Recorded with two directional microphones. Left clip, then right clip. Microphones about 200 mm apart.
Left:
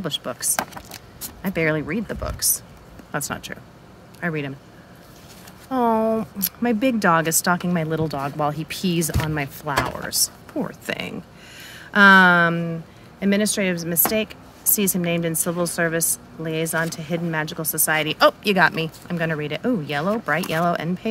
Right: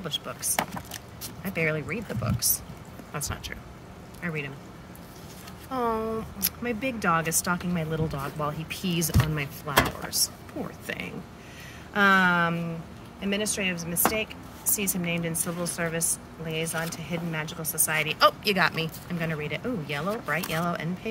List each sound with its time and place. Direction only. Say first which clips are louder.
0.0 s speech: left 6 dB; 50° left (ahead or behind)
5.7 s speech: left 8 dB; 35° left (ahead or behind)